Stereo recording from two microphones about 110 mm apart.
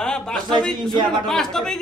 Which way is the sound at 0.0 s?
5° left (ahead or behind).